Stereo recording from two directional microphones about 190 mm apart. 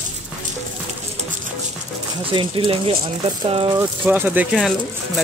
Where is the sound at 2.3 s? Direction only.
25° right (ahead or behind).